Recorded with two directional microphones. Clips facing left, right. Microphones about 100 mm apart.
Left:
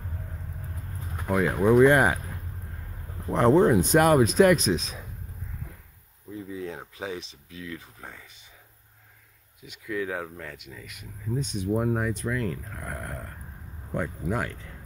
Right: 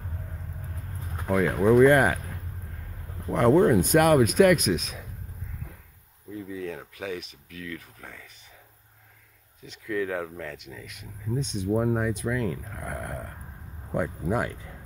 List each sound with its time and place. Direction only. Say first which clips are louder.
1.3 s speech: even; 10° left (ahead or behind)
3.3 s speech: even; 25° left (ahead or behind)
6.5 s speech: right 1 dB; 25° left (ahead or behind)
9.7 s speech: right 2 dB; 5° left (ahead or behind); by 14.5 s 15° right (ahead or behind)